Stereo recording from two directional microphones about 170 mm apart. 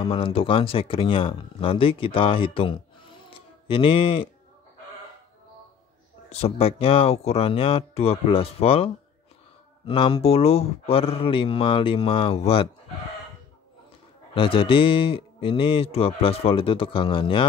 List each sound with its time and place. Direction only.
0.0 s a man's voice: 30° left (ahead or behind)
3.3 s music: 35° left (ahead or behind)
6.3 s a man's voice: 35° left (ahead or behind)
14.3 s a man's voice: 30° left (ahead or behind)